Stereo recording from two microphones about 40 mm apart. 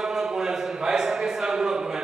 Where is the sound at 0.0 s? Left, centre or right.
Centre.